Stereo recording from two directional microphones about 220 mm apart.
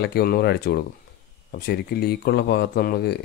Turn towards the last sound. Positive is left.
turn(degrees=45)  # may be behind; listen again after turning